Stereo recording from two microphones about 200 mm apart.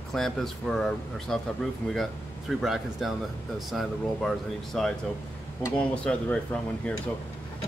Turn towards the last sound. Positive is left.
turn(degrees=5)  # may be behind; listen again after turning